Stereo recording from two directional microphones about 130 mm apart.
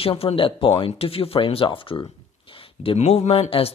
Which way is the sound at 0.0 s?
45° left (ahead or behind).